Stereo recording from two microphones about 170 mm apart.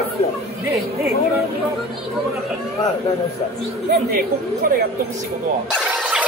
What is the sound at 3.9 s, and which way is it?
Speech, 65° right (ahead or behind).